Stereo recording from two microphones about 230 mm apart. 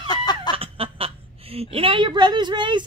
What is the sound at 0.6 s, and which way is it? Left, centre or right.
Speech, right.